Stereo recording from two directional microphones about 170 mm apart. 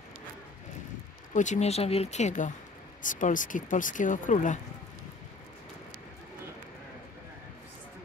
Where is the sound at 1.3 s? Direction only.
45° left (ahead or behind).